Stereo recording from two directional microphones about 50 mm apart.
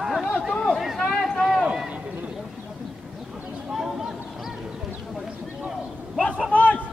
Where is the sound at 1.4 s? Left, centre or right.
Centre.